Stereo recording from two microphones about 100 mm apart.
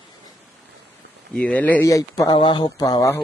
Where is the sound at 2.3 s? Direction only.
55° left (ahead or behind).